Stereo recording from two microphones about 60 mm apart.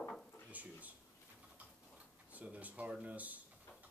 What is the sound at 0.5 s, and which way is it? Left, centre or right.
Speech, right.